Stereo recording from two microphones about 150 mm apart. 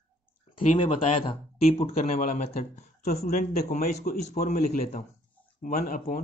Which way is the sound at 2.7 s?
50° left (ahead or behind).